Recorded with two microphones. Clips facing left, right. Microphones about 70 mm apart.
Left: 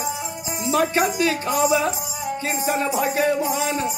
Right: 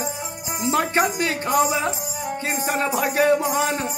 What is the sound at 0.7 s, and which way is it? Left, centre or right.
Speech, right.